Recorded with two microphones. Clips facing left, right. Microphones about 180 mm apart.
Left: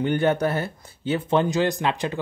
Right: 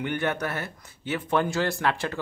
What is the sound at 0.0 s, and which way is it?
Speech, 30° left (ahead or behind).